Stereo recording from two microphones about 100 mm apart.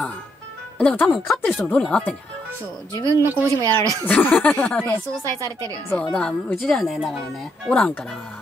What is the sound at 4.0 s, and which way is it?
Speech, 20° left (ahead or behind).